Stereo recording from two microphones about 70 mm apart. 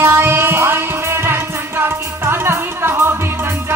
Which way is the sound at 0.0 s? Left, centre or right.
Right.